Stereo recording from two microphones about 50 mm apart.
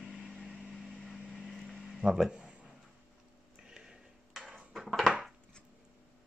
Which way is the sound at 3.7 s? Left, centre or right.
Centre.